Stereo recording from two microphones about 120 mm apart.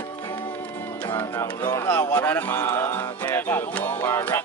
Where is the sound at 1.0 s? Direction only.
20° left (ahead or behind).